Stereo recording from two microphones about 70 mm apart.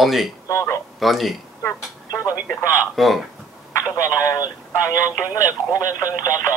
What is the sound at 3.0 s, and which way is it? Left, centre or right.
Speech, centre.